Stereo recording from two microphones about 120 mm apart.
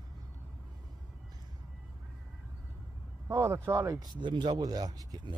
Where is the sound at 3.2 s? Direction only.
25° right (ahead or behind).